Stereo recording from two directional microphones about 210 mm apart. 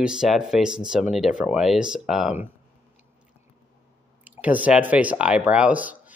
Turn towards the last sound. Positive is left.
turn(degrees=-5)  # may be behind; listen again after turning